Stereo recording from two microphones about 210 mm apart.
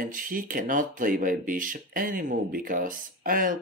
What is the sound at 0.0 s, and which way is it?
Speech, 40° right (ahead or behind).